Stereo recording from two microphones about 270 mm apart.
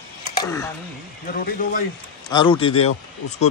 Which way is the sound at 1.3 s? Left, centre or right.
Left.